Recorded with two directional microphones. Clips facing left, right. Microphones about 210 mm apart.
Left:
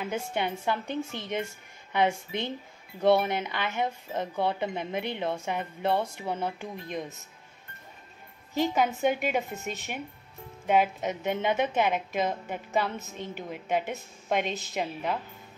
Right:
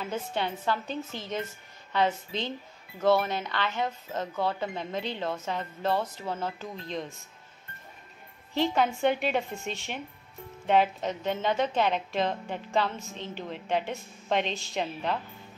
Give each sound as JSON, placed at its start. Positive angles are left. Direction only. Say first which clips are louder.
{"t": 0.0, "sound": "a woman's voice", "louder": "left 1 dB", "side_deg": 15}
{"t": 8.5, "sound": "a woman's voice", "louder": "even", "side_deg": 10}